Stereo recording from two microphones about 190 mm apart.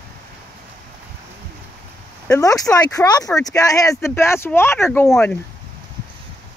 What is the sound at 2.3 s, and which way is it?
Speech, 20° left (ahead or behind).